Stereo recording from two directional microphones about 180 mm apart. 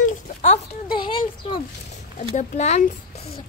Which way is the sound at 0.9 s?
25° left (ahead or behind).